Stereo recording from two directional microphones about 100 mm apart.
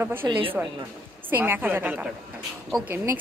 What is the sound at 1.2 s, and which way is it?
A woman's voice, 20° right (ahead or behind).